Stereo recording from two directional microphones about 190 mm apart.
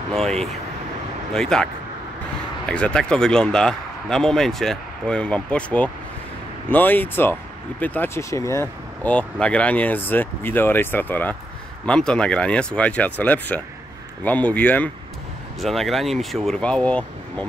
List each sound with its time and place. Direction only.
0.1 s speech: centre (ahead or behind)
2.7 s speech: 5° left (ahead or behind)